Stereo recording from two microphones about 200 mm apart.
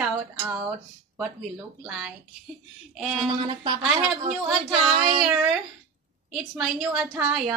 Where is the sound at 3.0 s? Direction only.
Centre (ahead or behind).